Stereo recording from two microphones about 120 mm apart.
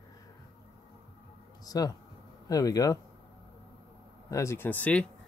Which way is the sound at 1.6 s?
30° left (ahead or behind).